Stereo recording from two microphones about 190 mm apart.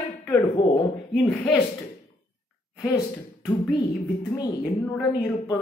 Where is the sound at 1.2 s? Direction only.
10° left (ahead or behind).